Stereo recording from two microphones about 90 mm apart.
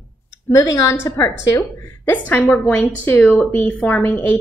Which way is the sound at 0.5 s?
35° left (ahead or behind).